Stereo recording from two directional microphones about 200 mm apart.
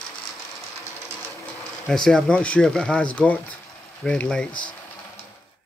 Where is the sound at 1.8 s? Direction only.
5° left (ahead or behind).